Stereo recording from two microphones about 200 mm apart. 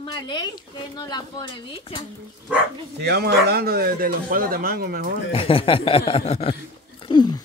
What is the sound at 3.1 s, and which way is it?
Speech, 55° right (ahead or behind).